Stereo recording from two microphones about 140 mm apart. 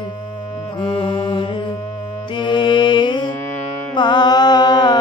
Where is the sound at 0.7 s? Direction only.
35° left (ahead or behind).